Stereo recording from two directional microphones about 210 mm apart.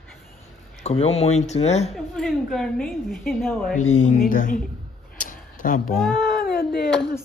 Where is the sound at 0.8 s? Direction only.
30° left (ahead or behind).